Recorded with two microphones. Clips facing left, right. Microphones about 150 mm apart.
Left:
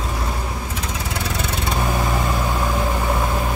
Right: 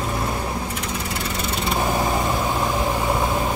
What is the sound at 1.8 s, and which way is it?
Vehicle, 20° right (ahead or behind).